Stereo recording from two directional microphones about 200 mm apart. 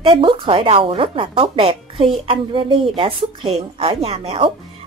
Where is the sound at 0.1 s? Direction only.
25° right (ahead or behind).